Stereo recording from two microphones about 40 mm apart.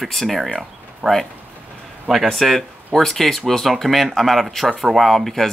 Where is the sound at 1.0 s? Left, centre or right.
Right.